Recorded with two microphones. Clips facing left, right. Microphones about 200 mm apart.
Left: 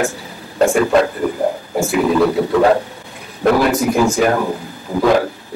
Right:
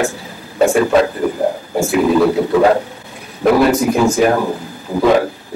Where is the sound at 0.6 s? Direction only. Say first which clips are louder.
Right 1 dB; centre (ahead or behind).